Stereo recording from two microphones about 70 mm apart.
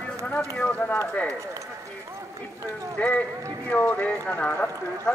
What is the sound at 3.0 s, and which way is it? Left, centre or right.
Speech, left.